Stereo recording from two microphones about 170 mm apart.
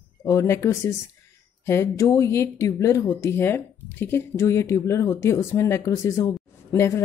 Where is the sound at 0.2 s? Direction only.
15° left (ahead or behind).